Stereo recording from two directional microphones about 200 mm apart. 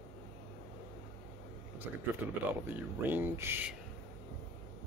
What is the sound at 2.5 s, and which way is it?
Speech, 10° right (ahead or behind).